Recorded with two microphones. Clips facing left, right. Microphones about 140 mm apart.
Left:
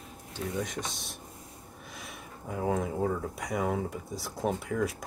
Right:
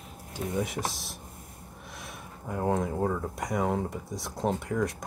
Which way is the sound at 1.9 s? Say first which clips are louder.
Right 1 dB; centre (ahead or behind).